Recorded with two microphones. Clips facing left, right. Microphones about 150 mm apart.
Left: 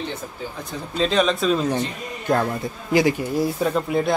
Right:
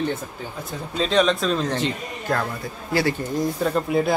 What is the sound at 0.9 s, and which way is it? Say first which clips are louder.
Speech: even; centre (ahead or behind).